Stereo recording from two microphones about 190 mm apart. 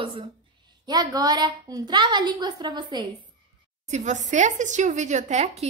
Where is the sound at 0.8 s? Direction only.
20° right (ahead or behind).